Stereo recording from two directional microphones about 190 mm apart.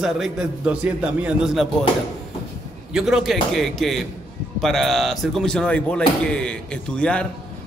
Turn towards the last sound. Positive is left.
turn(degrees=5)  # may be behind; listen again after turning